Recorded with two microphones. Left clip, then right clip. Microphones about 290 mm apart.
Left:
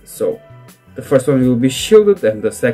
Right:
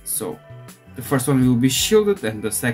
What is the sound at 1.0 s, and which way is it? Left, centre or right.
Speech, centre.